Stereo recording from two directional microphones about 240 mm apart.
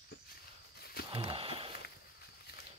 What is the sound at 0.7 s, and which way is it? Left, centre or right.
Walk, left.